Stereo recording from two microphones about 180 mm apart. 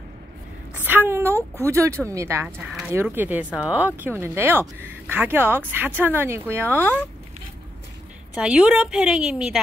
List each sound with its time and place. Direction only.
0.8 s a woman's voice: 10° right (ahead or behind)
8.4 s a woman's voice: 5° right (ahead or behind)